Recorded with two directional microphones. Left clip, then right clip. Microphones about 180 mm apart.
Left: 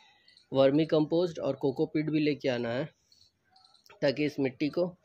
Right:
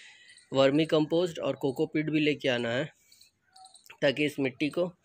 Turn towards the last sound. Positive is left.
turn(degrees=10)  # may be behind; listen again after turning